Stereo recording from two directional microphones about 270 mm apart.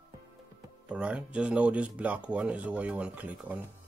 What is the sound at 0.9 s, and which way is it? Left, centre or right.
Speech, centre.